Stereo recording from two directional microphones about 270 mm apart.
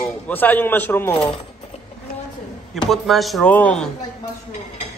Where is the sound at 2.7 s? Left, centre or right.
Centre.